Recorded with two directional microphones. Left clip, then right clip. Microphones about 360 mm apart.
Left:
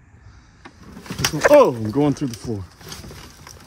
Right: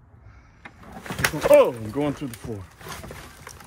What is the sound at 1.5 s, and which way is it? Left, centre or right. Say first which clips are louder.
Speech: left 3 dB; centre.